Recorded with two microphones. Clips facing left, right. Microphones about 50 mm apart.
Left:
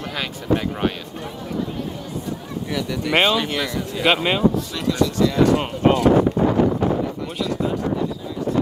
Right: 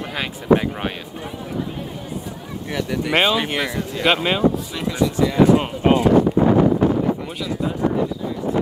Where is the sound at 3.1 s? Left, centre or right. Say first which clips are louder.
Even; centre.